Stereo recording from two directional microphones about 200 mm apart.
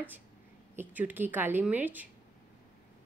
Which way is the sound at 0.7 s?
10° right (ahead or behind).